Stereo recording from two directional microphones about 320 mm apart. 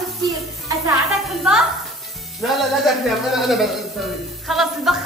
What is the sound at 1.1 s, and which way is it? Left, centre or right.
Speech, centre.